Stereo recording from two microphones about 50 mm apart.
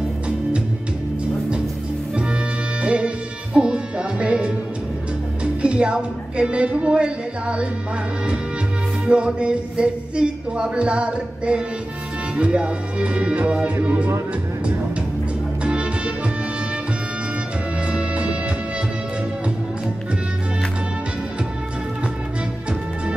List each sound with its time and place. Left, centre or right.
2.8 s music: right
5.4 s speech: right
9.0 s music: right
13.8 s speech: right
15.6 s music: right
17.8 s music: right